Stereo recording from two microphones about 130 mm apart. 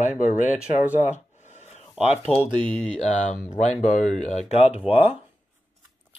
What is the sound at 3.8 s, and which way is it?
Speech, 80° left.